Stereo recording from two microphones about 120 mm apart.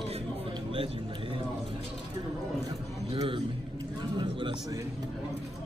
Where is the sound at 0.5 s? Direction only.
50° right (ahead or behind).